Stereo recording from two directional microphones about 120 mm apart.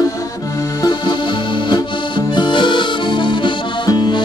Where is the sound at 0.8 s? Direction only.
40° left (ahead or behind).